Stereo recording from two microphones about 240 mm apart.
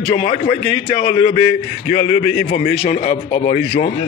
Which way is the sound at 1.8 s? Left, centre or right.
Left.